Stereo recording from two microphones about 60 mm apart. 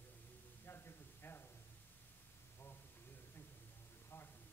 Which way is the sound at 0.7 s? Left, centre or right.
Left.